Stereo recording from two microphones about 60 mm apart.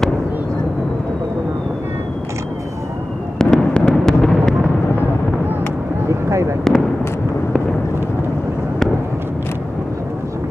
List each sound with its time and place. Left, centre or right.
3.3 s fireworks: centre
6.0 s a sound: right
6.7 s fireworks: centre